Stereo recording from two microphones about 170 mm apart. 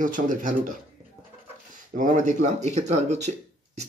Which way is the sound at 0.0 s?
50° right (ahead or behind).